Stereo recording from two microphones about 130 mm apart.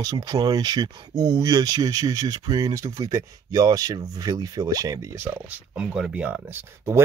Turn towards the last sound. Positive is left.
turn(degrees=-15)  # may be behind; listen again after turning